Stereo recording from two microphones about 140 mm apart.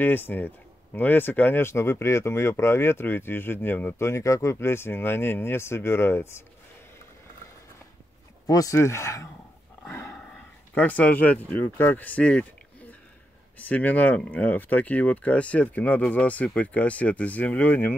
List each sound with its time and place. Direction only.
0.0 s speech: 15° left (ahead or behind)
8.5 s speech: 25° left (ahead or behind)
9.8 s dog: 15° left (ahead or behind)
10.3 s speech: 10° left (ahead or behind)
13.6 s speech: 10° left (ahead or behind)